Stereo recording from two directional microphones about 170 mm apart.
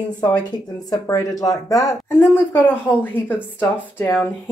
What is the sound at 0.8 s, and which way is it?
A woman's voice, 20° left (ahead or behind).